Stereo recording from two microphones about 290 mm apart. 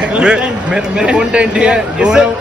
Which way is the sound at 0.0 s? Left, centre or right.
Centre.